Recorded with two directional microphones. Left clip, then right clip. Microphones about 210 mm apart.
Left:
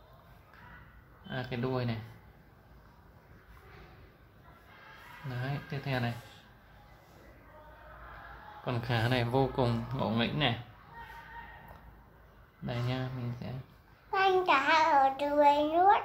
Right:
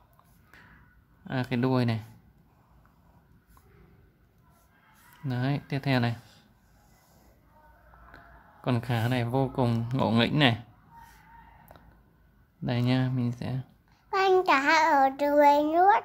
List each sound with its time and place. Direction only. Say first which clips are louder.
1.3 s speech: right 7 dB; 50° right (ahead or behind)
5.3 s speech: right 8 dB; 50° right (ahead or behind)
8.6 s speech: right 2 dB; 40° right (ahead or behind)
12.6 s speech: right 8 dB; 50° right (ahead or behind)
14.1 s a child's voice: right 4 dB; 35° right (ahead or behind)